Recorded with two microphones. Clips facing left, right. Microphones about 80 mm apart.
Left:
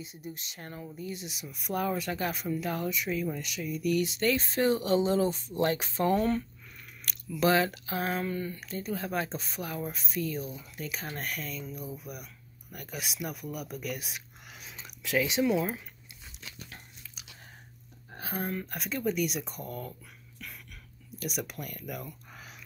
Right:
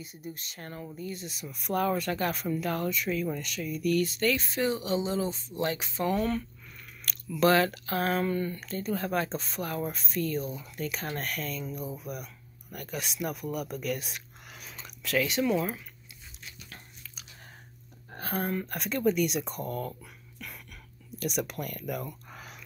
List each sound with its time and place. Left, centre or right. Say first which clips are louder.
0.0 s speech: even; left
7.2 s speech: right 2 dB; centre
11.6 s speech: right 4 dB; centre
12.7 s speech: right 3 dB; centre
14.6 s a sound: right 1 dB; centre
16.6 s biting: even; centre
18.1 s speech: right 3 dB; centre
19.9 s a sound: right 4 dB; centre
21.2 s speech: right 4 dB; centre